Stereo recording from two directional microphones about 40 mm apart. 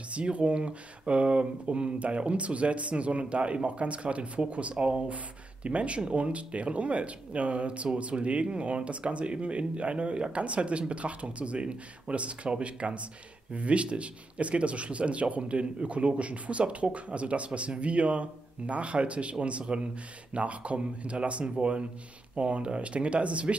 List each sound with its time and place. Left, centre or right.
0.1 s speech: right